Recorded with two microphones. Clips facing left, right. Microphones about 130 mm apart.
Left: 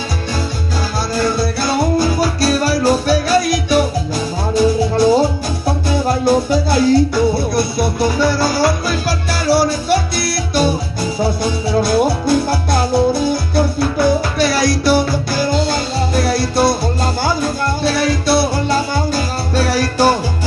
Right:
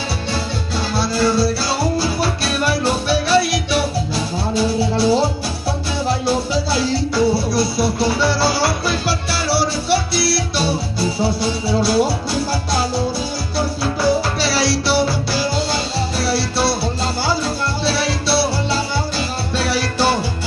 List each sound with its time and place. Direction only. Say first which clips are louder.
0.9 s music: right 1 dB; 50° left (ahead or behind)